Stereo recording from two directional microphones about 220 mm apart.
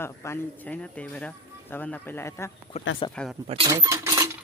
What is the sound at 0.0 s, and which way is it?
Speech, 10° left (ahead or behind).